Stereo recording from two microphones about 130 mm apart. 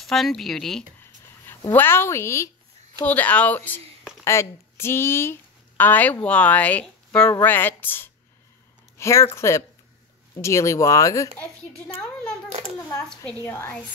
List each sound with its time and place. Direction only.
0.0 s a woman's voice: centre (ahead or behind)
1.7 s speech: 15° left (ahead or behind)
13.4 s speech: 15° left (ahead or behind)